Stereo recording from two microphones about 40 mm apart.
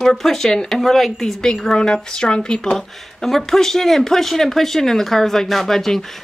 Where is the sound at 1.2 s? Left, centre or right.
Centre.